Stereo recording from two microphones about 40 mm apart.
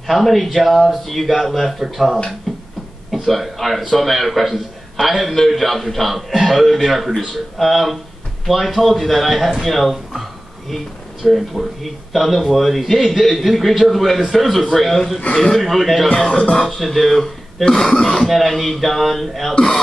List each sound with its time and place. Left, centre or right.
0.0 s speech: centre
3.1 s a man's voice: centre
11.2 s speech: centre
17.6 s cough: centre
18.1 s speech: centre